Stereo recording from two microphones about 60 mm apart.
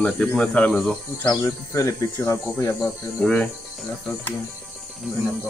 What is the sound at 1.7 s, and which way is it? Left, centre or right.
Speech, left.